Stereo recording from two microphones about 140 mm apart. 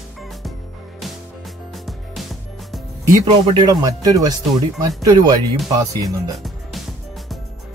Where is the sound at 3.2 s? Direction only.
35° right (ahead or behind).